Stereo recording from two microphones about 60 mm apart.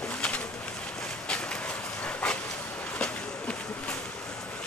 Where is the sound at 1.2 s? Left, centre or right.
Left.